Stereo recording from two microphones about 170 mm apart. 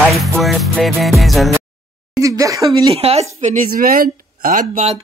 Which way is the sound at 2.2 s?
20° right (ahead or behind).